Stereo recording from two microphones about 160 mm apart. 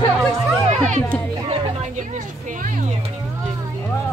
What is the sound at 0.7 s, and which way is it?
A child's voice, 50° right (ahead or behind).